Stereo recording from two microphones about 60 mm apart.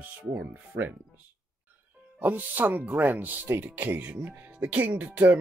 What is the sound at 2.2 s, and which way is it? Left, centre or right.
Speech, right.